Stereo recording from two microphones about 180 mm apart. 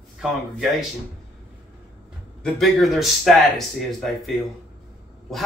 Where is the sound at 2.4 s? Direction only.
Centre (ahead or behind).